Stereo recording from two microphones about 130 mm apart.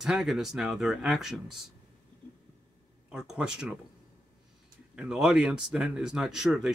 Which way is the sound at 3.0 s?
5° right (ahead or behind).